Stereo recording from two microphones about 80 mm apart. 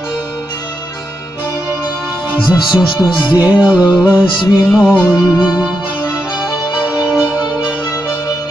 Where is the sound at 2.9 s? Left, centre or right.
Left.